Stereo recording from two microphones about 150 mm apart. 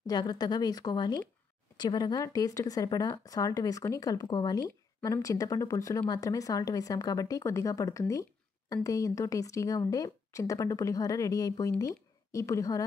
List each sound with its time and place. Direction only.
0.0 s a woman's voice: 30° left (ahead or behind)